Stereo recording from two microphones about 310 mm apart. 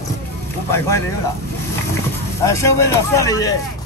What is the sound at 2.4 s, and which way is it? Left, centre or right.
A man's voice, centre.